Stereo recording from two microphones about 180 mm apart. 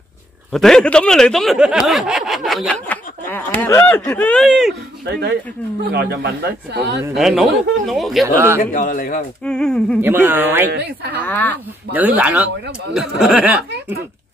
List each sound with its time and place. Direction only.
0.5 s speech: centre (ahead or behind)
5.9 s speech: 65° right (ahead or behind)
7.2 s speech: centre (ahead or behind)
8.5 s a man's voice: 50° left (ahead or behind)
9.4 s speech: 5° left (ahead or behind)
10.0 s speech: 10° right (ahead or behind)
11.1 s speech: 10° left (ahead or behind)
11.9 s speech: 10° right (ahead or behind)